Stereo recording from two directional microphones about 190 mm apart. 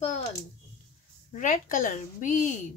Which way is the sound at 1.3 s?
40° left (ahead or behind).